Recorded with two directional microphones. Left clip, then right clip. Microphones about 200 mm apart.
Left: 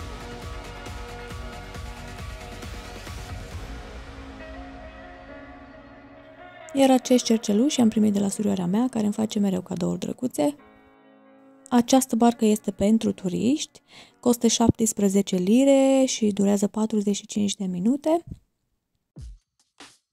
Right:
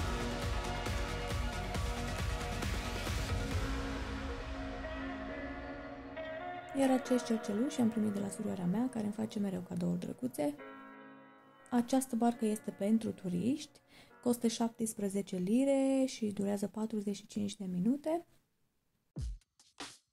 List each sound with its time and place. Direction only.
6.6 s speech: 45° left (ahead or behind)
11.7 s speech: 45° left (ahead or behind)